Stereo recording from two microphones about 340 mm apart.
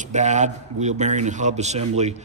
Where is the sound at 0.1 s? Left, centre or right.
Right.